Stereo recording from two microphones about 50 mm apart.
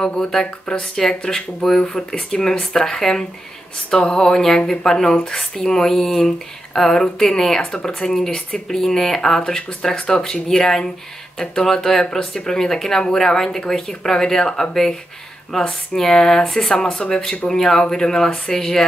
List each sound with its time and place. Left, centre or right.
0.0 s speech: centre